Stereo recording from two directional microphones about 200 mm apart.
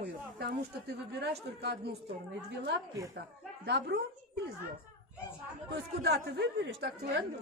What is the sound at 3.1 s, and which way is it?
A woman's voice, 55° right (ahead or behind).